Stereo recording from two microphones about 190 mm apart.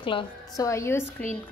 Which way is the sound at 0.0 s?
25° left (ahead or behind).